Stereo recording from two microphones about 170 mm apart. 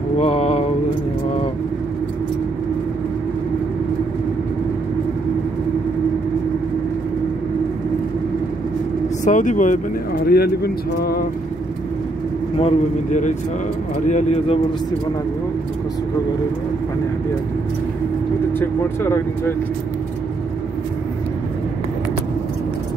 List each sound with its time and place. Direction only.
0.2 s a sound: 40° left (ahead or behind)
9.2 s a man's voice: 45° left (ahead or behind)
10.1 s speech: 65° left (ahead or behind)
12.5 s a man's voice: 40° left (ahead or behind)
18.6 s speech: 15° left (ahead or behind)